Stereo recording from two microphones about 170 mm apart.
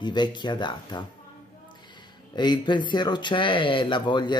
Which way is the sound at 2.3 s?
25° left (ahead or behind).